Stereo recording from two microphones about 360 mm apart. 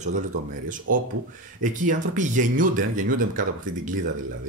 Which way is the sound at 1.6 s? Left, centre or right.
Right.